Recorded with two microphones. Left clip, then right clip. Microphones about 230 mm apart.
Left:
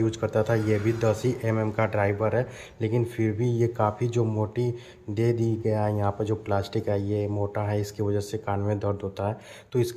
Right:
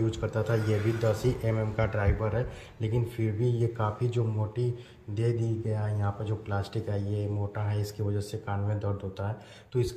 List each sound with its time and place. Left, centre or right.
0.0 s speech: centre